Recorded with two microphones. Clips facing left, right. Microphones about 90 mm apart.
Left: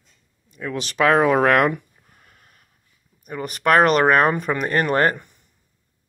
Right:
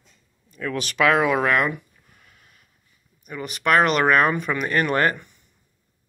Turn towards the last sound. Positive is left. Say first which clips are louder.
# left 2 dB
turn(degrees=35)  # may be behind; listen again after turning